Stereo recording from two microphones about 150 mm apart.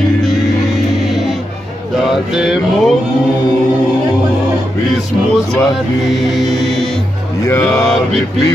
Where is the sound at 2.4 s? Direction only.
Centre (ahead or behind).